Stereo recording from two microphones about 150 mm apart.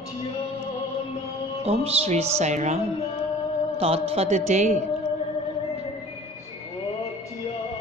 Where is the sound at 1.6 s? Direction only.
45° right (ahead or behind).